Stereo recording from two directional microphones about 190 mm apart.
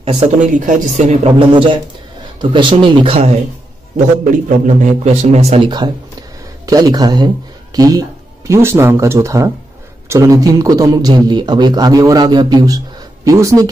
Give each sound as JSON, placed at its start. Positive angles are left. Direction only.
{"t": 0.0, "sound": "a man's voice", "side_deg": -30}
{"t": 0.5, "sound": "a man's voice", "side_deg": -40}
{"t": 3.9, "sound": "a man's voice", "side_deg": -45}